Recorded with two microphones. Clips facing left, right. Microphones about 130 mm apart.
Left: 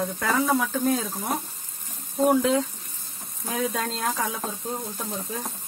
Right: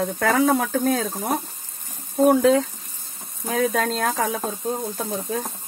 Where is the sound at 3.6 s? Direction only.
80° right.